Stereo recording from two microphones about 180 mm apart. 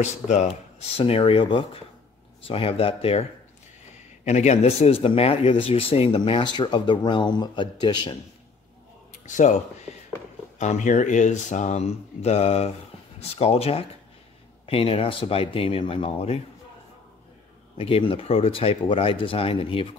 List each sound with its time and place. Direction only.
0.0 s a man's voice: 40° left (ahead or behind)
9.2 s speech: 45° left (ahead or behind)
10.6 s speech: 40° left (ahead or behind)
17.7 s speech: 30° left (ahead or behind)